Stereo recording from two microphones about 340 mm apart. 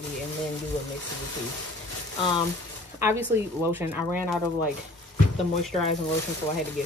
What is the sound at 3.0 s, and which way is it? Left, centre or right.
Speech, centre.